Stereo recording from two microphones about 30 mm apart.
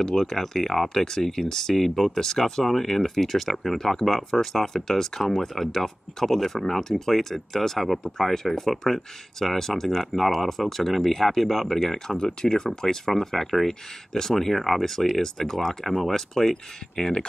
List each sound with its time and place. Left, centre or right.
0.0 s speech: centre
5.2 s speech: centre
12.2 s speech: left
12.8 s speech: centre